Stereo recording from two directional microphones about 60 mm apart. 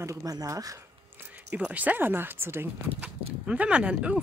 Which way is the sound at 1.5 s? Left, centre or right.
Right.